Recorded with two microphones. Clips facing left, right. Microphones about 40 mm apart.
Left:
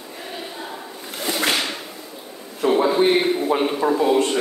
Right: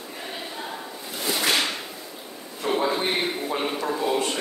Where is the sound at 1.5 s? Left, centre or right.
Centre.